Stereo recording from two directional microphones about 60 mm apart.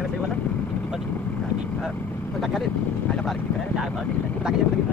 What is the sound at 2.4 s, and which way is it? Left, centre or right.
Speech, centre.